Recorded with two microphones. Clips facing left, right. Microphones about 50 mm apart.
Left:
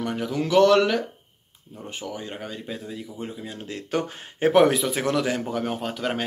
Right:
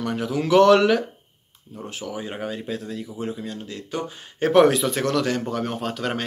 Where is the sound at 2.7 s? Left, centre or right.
Centre.